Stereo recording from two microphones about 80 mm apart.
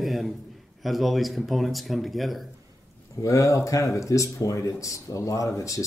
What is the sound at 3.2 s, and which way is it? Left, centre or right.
Speech, left.